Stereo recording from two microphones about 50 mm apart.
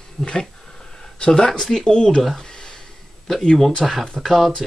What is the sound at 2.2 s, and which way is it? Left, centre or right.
Speech, centre.